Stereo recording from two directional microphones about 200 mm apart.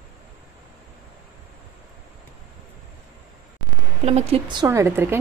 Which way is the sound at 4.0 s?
30° right (ahead or behind).